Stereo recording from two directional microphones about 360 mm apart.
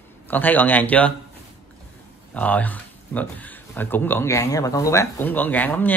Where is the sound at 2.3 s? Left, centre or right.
Centre.